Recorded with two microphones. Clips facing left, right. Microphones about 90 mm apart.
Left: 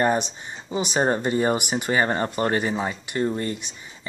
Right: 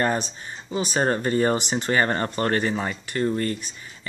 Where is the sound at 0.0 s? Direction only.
15° left (ahead or behind).